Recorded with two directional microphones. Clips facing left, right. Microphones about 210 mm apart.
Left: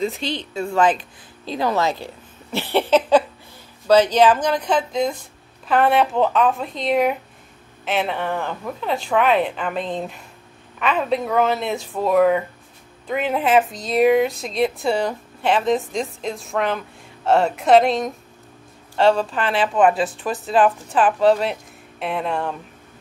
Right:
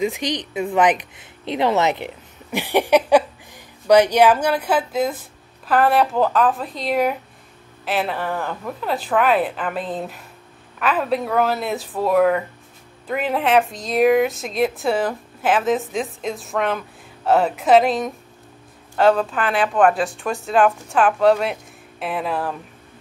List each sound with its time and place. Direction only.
0.0 s a woman's voice: 15° right (ahead or behind)